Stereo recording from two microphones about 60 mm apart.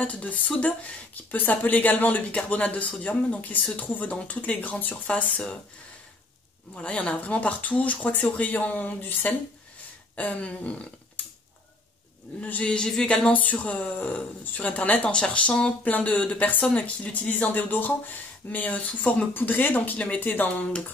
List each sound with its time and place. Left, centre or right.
0.0 s speech: left
6.7 s speech: centre
12.4 s speech: centre
13.3 s speech: left